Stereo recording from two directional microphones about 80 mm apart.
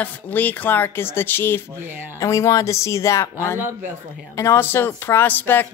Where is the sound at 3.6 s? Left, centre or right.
Right.